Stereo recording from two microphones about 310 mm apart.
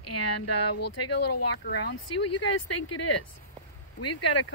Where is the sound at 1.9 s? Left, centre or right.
Left.